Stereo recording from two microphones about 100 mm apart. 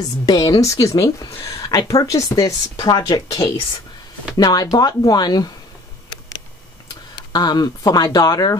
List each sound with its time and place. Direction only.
0.3 s speech: 45° left (ahead or behind)
0.6 s speech: 35° left (ahead or behind)
1.4 s a sound: 65° left (ahead or behind)
1.7 s speech: 35° left (ahead or behind)
7.2 s speech: 45° left (ahead or behind)